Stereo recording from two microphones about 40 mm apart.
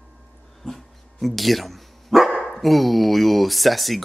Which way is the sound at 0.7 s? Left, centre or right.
Centre.